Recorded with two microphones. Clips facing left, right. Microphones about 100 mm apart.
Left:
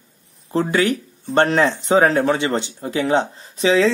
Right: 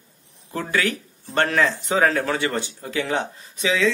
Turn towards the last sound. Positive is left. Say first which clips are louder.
# left 6 dB
turn(degrees=35)  # may be behind; listen again after turning